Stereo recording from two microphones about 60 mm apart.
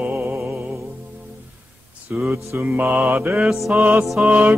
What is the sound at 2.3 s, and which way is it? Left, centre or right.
Mantra, right.